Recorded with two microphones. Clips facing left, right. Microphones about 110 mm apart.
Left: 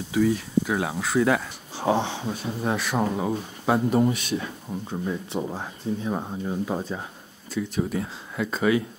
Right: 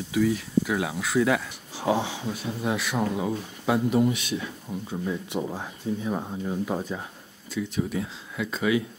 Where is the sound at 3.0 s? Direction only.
30° left (ahead or behind).